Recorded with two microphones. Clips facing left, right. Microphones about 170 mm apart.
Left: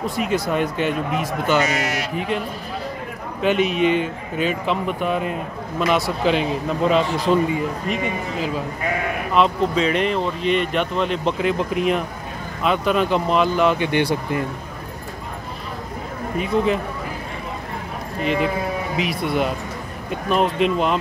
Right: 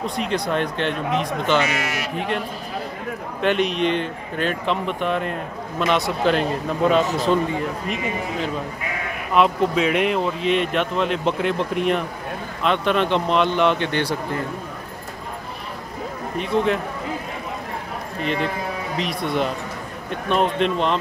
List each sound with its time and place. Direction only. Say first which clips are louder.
0.0 s speech: left 2 dB; 5° left (ahead or behind)
1.6 s speech: left 2 dB; 40° left (ahead or behind)
2.1 s speech: left 1 dB; 5° left (ahead or behind)
16.3 s speech: left 1 dB; centre (ahead or behind)
18.2 s speech: left 3 dB; 5° left (ahead or behind)